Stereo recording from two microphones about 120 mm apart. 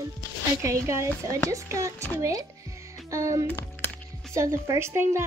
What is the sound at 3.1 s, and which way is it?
Speech, 25° right (ahead or behind).